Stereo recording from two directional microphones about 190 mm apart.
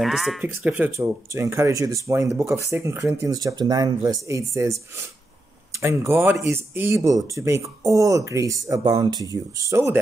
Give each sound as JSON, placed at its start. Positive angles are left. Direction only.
{"t": 0.0, "sound": "speech", "side_deg": 0}